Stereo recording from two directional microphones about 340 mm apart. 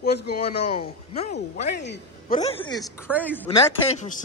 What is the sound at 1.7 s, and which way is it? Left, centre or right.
Speech, left.